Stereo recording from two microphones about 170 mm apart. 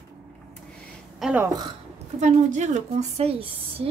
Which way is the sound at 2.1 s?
40° right (ahead or behind).